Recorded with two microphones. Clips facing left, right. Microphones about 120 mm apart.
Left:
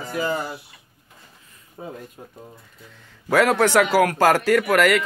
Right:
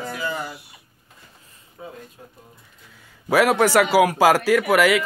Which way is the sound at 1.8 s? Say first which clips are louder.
Left 3 dB; 40° left (ahead or behind).